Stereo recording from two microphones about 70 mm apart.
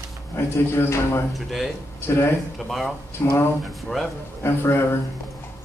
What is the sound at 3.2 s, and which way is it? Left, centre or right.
Speech, left.